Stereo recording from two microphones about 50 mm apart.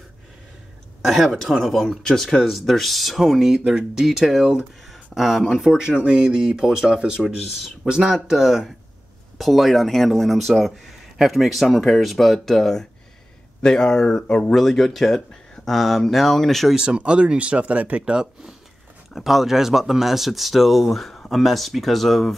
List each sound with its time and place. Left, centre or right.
1.0 s speech: centre
5.8 s speech: centre
16.7 s speech: centre
19.1 s speech: centre